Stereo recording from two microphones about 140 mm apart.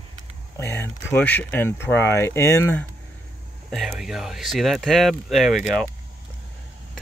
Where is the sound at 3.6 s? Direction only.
5° right (ahead or behind).